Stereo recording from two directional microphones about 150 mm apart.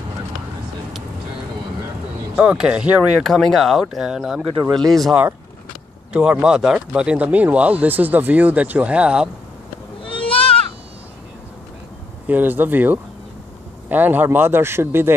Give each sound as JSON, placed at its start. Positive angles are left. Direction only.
{"t": 2.3, "sound": "speech", "side_deg": -5}
{"t": 10.0, "sound": "goat", "side_deg": 35}
{"t": 12.3, "sound": "speech", "side_deg": -10}